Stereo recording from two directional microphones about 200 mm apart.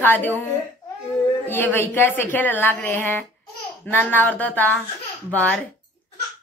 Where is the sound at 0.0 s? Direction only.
10° left (ahead or behind).